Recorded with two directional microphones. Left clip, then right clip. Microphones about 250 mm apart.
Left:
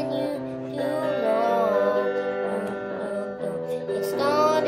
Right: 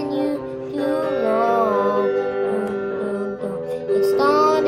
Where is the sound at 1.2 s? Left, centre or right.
Centre.